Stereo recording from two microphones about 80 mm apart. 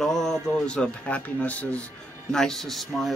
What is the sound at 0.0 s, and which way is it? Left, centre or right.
Speech, centre.